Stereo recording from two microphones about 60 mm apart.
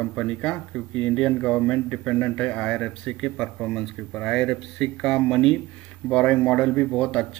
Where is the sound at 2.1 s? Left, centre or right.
Left; by 5.5 s centre.